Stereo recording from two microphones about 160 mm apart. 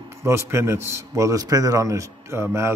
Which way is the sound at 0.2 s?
15° right (ahead or behind).